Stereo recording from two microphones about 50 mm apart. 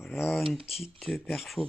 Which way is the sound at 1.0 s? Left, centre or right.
Centre.